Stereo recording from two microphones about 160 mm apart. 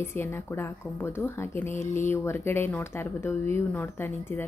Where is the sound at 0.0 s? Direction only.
15° left (ahead or behind).